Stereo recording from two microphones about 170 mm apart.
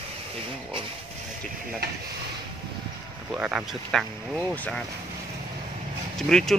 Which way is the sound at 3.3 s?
5° right (ahead or behind).